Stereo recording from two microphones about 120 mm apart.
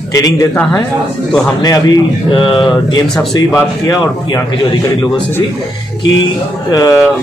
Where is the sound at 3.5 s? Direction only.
30° left (ahead or behind).